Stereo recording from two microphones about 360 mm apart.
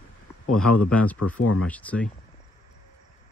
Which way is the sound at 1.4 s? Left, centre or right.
Left.